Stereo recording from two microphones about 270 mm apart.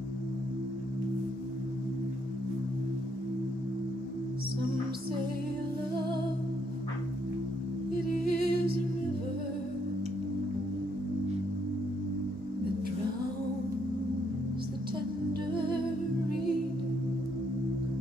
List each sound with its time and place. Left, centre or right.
8.3 s music: right